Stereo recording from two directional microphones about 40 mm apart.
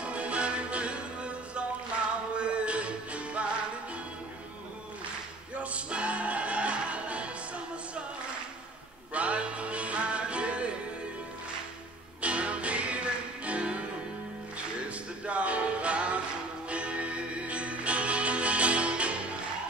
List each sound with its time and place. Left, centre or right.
0.0 s music: right
5.6 s music: right
9.1 s music: right
12.2 s music: right
15.2 s music: right